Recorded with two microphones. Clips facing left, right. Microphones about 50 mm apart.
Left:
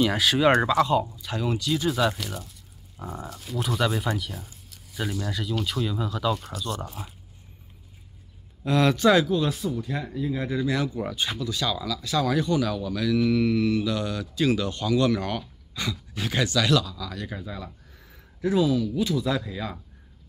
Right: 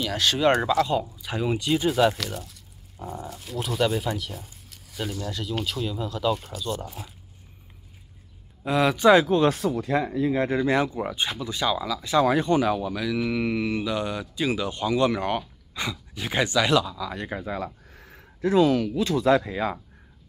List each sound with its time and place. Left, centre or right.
0.2 s speech: centre
1.0 s speech: centre
1.9 s speech: centre
3.0 s speech: centre
3.3 s speech: centre
6.3 s speech: centre
8.6 s speech: centre
9.2 s speech: right
9.6 s speech: right
11.0 s speech: centre; by 19.8 s right